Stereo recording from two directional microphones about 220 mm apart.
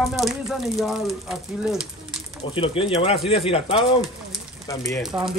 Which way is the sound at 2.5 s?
25° left (ahead or behind).